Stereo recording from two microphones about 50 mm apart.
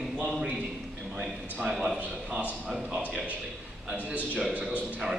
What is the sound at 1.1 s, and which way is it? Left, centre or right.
Speech, right.